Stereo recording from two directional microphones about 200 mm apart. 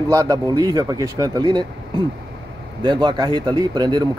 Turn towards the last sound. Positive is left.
turn(degrees=-20)  # may be behind; listen again after turning